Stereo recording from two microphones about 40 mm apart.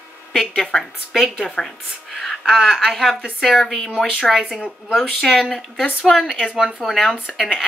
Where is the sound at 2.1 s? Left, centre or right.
Centre.